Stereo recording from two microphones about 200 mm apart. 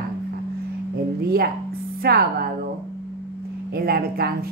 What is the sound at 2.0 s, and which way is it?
Speech, 50° right (ahead or behind).